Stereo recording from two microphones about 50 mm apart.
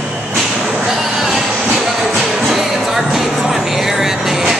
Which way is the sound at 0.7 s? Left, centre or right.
Centre.